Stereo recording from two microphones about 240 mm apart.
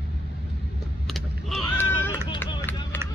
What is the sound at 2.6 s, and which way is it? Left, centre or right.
Run, centre.